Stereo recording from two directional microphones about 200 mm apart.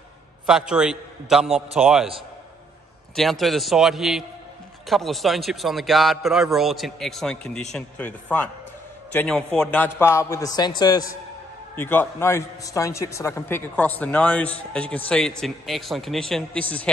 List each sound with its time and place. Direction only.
0.5 s a man's voice: 5° right (ahead or behind)
3.2 s a man's voice: centre (ahead or behind)